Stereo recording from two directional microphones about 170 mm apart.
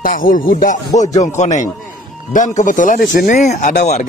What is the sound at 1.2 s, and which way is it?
Speech, 45° left (ahead or behind).